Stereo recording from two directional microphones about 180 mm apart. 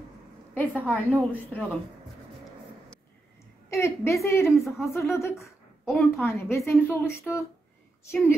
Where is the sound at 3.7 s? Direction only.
15° left (ahead or behind).